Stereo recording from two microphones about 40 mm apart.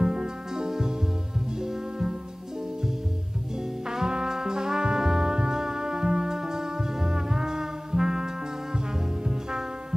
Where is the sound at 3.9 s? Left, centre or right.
Centre.